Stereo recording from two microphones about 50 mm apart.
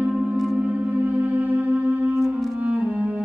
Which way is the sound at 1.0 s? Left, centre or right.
Right.